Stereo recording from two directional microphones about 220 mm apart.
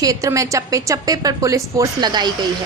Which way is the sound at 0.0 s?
15° right (ahead or behind).